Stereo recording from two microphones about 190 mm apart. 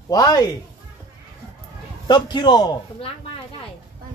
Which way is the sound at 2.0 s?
25° left (ahead or behind).